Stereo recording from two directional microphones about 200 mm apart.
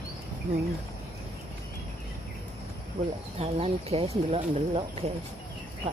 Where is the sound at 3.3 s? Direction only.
30° right (ahead or behind).